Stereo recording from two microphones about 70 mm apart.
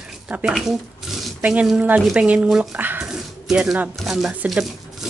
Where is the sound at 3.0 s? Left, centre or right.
Centre.